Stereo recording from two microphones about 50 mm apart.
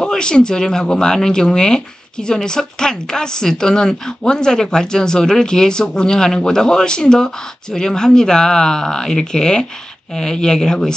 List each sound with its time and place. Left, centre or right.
0.0 s speech: centre